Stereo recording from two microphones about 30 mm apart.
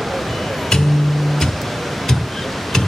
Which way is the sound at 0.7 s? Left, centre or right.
Centre.